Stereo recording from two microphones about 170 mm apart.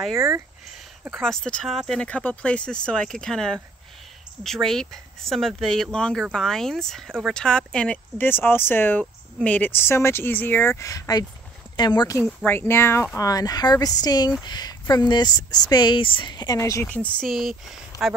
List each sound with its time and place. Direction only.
0.1 s speech: 20° right (ahead or behind)
1.2 s speech: 5° left (ahead or behind); by 12.2 s 25° left (ahead or behind)
12.4 s speech: 15° left (ahead or behind)